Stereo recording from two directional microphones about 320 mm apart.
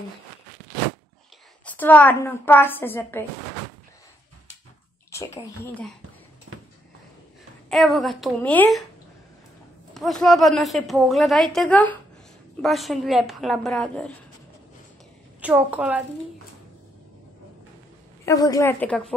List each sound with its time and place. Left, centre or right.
1.7 s a woman's voice: centre
5.1 s bathtub: centre
6.5 s a sound: right
7.7 s a woman's voice: centre
9.9 s a woman's voice: centre
15.4 s a woman's voice: centre
18.2 s a woman's voice: centre